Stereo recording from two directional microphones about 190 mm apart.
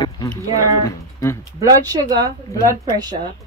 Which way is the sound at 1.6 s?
20° right (ahead or behind).